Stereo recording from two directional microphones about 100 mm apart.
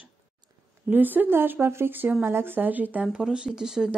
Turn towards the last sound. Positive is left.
turn(degrees=-5)  # may be behind; listen again after turning